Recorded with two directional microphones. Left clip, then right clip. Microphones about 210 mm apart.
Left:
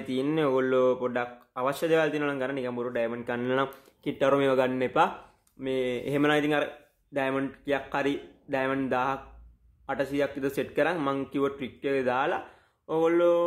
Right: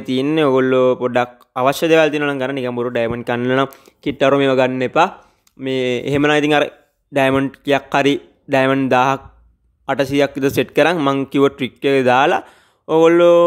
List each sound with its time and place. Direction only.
0.0 s speech: 40° right (ahead or behind)